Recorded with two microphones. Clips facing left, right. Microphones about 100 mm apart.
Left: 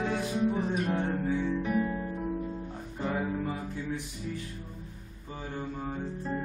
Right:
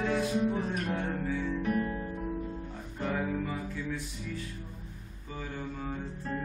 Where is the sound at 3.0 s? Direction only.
20° left (ahead or behind).